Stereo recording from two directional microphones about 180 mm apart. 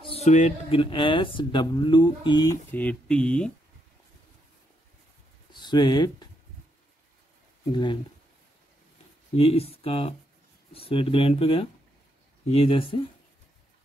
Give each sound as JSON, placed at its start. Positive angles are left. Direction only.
{"t": 0.0, "sound": "a sound", "side_deg": 35}
{"t": 0.7, "sound": "speech", "side_deg": 25}
{"t": 2.7, "sound": "speech", "side_deg": 5}
{"t": 5.5, "sound": "speech", "side_deg": 25}
{"t": 7.7, "sound": "speech", "side_deg": 25}
{"t": 9.4, "sound": "speech", "side_deg": 35}